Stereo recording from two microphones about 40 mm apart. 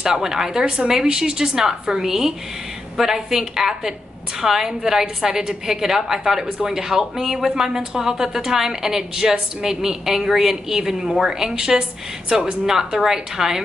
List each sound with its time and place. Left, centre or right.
0.0 s a woman's voice: centre